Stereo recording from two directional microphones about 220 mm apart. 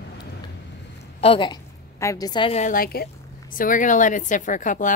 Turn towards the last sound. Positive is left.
turn(degrees=35)  # may be behind; listen again after turning